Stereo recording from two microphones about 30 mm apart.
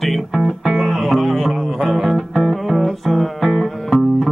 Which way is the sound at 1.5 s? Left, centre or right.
Centre.